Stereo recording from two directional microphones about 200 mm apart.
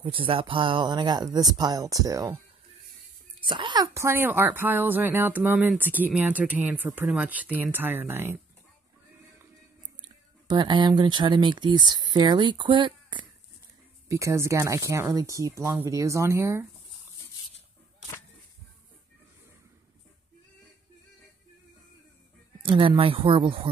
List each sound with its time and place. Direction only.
0.0 s speech: 25° right (ahead or behind)
3.4 s a woman's voice: 25° right (ahead or behind)
10.0 s a woman's voice: 20° right (ahead or behind)
22.7 s speech: 25° right (ahead or behind)